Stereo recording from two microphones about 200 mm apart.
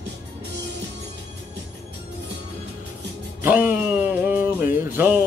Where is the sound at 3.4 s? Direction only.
10° right (ahead or behind).